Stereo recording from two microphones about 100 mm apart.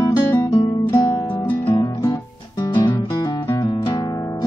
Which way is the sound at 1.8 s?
35° left (ahead or behind).